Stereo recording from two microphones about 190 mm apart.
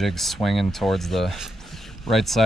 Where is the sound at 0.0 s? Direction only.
Centre (ahead or behind).